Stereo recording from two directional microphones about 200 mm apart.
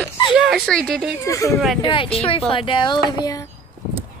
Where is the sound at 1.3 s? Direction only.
15° left (ahead or behind).